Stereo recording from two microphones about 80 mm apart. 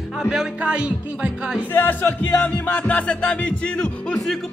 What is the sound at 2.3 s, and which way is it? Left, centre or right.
Music, centre.